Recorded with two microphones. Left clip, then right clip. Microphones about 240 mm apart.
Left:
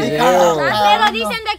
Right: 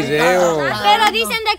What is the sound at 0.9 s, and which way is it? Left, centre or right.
Speech, right.